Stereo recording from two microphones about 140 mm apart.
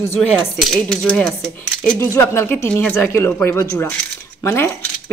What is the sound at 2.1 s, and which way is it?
A woman's voice, 20° left (ahead or behind).